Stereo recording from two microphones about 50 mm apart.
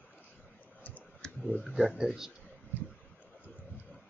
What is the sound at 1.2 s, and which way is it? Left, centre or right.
Clicking, centre.